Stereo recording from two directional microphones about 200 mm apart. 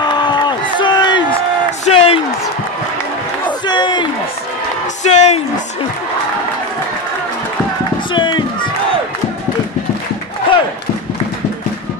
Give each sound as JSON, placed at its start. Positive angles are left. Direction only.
{"t": 0.0, "sound": "crowd", "side_deg": 20}
{"t": 1.9, "sound": "a sound", "side_deg": 30}
{"t": 3.6, "sound": "crowd", "side_deg": 20}
{"t": 5.0, "sound": "music", "side_deg": 35}
{"t": 8.1, "sound": "run", "side_deg": 25}